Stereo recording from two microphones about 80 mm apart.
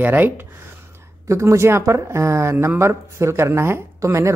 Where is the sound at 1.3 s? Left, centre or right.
Right.